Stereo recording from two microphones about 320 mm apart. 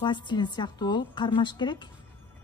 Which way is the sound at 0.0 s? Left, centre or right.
Centre.